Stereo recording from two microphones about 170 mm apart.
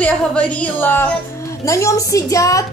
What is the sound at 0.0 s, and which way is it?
Music, 5° left (ahead or behind).